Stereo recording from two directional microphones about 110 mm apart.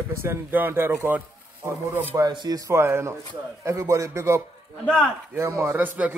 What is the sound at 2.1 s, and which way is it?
Speech, 40° right (ahead or behind).